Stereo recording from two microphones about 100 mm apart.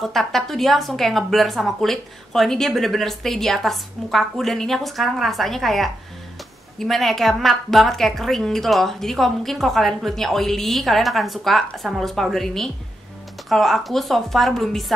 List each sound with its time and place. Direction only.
0.0 s a woman's voice: centre (ahead or behind)